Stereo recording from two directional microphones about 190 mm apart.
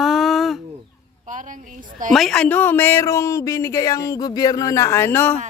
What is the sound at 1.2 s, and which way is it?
Speech, 40° right (ahead or behind).